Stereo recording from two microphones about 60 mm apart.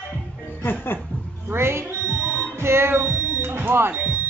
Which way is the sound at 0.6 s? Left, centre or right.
Left.